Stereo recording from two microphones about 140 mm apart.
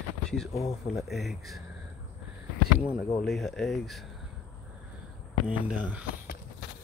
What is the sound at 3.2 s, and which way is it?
Speech, centre (ahead or behind).